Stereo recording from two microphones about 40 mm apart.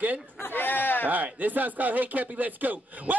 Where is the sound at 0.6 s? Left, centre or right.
Left.